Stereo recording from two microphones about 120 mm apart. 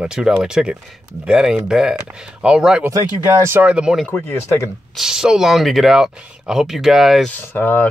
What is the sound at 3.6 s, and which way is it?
Speech, 10° right (ahead or behind).